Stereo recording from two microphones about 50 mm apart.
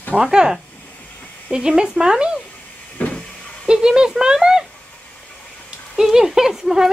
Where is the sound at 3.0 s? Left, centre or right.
Left.